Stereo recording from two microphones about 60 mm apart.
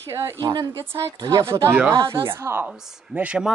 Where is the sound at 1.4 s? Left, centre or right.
Right.